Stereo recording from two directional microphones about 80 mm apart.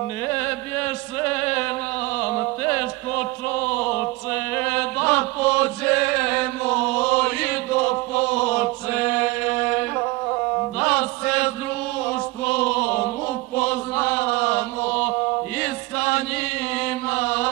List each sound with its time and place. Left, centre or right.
0.3 s chant: left
10.8 s mantra: centre
12.1 s music: centre
13.6 s chant: centre
16.8 s mantra: centre